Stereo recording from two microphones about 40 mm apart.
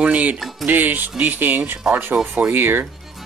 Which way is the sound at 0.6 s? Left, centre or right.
Right.